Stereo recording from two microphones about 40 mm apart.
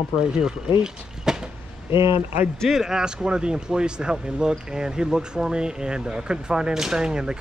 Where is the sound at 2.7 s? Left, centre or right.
Centre.